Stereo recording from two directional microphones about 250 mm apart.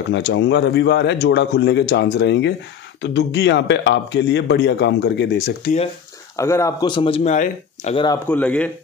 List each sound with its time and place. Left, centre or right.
0.1 s a man's voice: left
6.3 s speech: centre
8.3 s speech: centre